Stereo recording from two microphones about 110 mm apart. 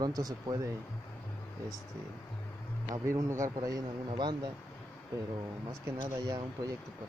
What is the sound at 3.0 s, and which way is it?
Speech, 30° right (ahead or behind).